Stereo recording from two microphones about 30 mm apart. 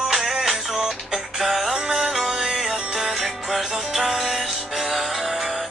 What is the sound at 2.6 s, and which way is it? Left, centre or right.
Music, centre.